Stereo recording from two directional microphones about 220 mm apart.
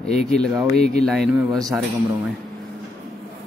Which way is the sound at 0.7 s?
Centre (ahead or behind).